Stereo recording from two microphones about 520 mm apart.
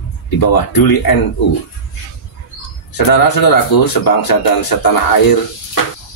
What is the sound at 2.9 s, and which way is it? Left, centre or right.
Speech, left.